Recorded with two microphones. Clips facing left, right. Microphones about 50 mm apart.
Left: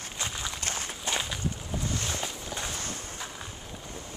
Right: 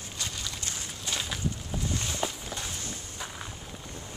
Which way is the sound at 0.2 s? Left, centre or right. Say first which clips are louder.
Left 3 dB; left.